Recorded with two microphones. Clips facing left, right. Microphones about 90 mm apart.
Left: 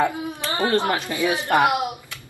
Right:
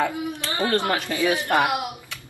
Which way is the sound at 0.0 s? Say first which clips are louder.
Left 2 dB; 20° left (ahead or behind).